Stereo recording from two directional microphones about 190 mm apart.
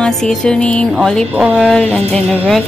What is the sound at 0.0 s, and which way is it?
Speech, centre (ahead or behind).